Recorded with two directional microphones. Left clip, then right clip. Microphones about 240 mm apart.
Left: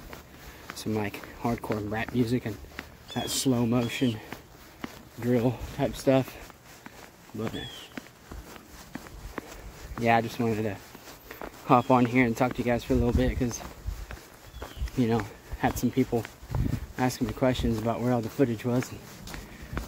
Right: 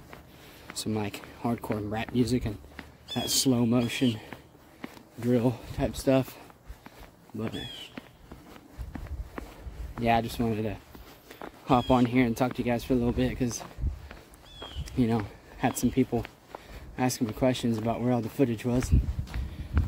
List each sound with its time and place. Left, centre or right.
0.7 s speech: centre
5.3 s speech: centre
9.4 s a sound: left
10.0 s speech: centre
15.0 s speech: centre